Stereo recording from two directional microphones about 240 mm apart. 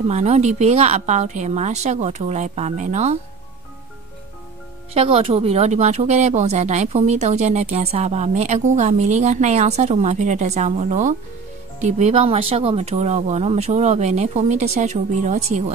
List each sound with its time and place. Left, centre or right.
0.1 s speech: right
4.9 s speech: right